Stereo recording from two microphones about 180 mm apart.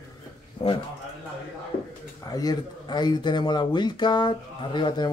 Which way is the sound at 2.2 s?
20° left (ahead or behind).